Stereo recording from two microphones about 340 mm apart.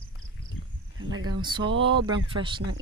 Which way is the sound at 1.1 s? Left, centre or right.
Right.